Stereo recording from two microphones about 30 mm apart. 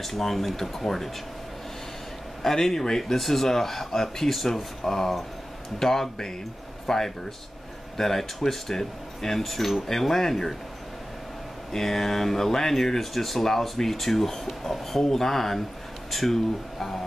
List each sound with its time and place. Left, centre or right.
0.0 s speech: centre
2.4 s speech: centre
9.5 s speech: centre
9.8 s speech: centre
11.7 s speech: centre